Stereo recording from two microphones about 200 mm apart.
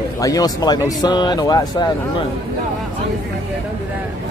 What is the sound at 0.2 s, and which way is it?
Speech, 20° left (ahead or behind).